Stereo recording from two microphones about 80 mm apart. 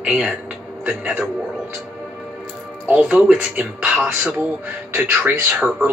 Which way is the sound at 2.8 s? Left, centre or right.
Centre.